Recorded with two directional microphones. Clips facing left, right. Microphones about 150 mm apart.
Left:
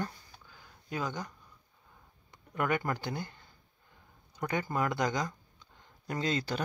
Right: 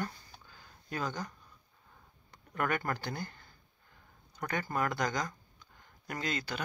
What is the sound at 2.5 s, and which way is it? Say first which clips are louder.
Speech: left 2 dB; 10° left (ahead or behind).